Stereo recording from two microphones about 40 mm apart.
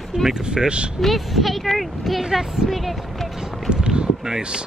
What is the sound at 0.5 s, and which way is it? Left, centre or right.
Speech, right.